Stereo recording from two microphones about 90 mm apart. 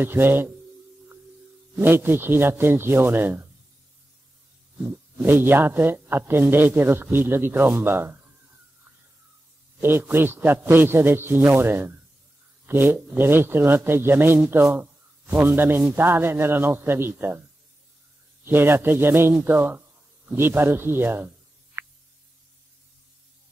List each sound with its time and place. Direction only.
0.0 s a man's voice: 25° right (ahead or behind)
1.8 s a man's voice: 25° right (ahead or behind)
4.8 s a man's voice: 25° right (ahead or behind)
9.8 s a man's voice: 25° right (ahead or behind)
18.4 s a man's voice: 25° right (ahead or behind)
21.8 s a sound: 25° right (ahead or behind)